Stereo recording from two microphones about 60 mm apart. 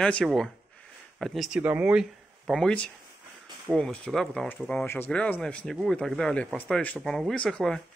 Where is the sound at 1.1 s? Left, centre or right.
Centre.